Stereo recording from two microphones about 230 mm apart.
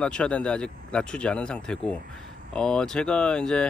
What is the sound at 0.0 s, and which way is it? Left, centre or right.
Speech, centre.